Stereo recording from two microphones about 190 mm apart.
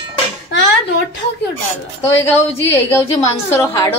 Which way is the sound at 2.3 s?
10° left (ahead or behind).